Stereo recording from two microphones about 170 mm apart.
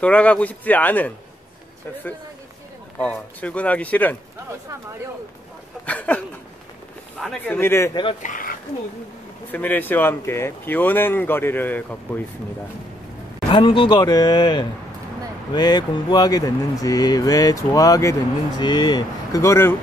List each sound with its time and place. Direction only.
0.0 s speech: 10° left (ahead or behind)
3.0 s speech: 5° left (ahead or behind)
5.9 s speech: 10° left (ahead or behind)
8.2 s speech: 50° left (ahead or behind)
9.5 s speech: 10° left (ahead or behind)
13.5 s speech: 30° left (ahead or behind)